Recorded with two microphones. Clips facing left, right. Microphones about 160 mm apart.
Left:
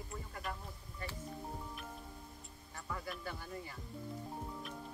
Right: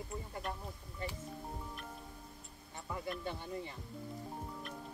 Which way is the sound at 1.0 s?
25° right (ahead or behind).